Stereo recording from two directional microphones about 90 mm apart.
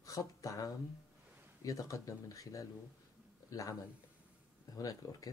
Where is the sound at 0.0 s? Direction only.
40° left (ahead or behind).